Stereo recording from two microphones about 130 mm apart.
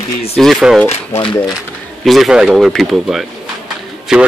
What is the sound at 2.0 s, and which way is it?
Speech, centre (ahead or behind).